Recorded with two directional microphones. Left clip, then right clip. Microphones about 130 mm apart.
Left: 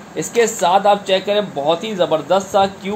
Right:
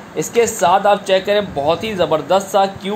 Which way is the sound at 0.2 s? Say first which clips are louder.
Right 1 dB; 30° right (ahead or behind).